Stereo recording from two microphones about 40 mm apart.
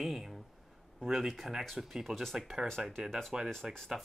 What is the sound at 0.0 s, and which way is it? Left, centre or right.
Speech, centre.